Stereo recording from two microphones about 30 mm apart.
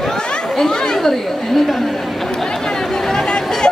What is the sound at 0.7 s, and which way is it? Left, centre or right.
Speech, left.